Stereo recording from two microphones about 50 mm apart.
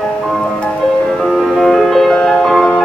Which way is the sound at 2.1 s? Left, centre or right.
Left.